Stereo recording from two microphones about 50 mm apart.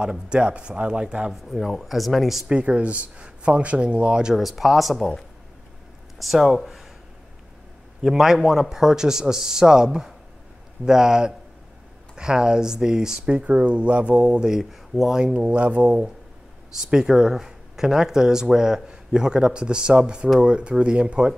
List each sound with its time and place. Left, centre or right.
0.0 s speech: centre
1.3 s speech: centre
2.5 s speech: right
4.4 s speech: centre
6.1 s speech: centre
8.0 s speech: centre
10.9 s speech: centre
13.4 s speech: right
14.5 s speech: centre
15.3 s speech: right
16.9 s speech: centre